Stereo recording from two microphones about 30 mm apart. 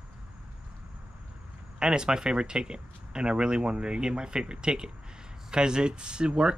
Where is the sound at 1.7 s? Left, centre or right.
Right.